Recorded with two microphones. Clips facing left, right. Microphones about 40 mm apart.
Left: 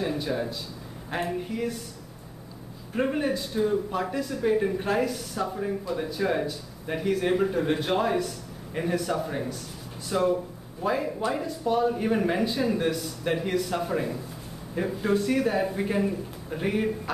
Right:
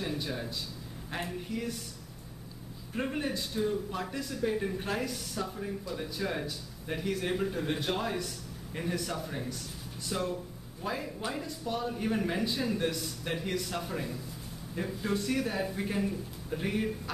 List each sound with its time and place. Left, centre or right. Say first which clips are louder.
0.0 s speech: left 7 dB; centre
2.9 s speech: left 7 dB; centre
5.5 s speech: left 7 dB; centre
13.8 s speech: left 8 dB; centre